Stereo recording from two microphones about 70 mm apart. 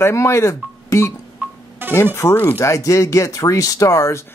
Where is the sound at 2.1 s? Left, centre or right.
Left.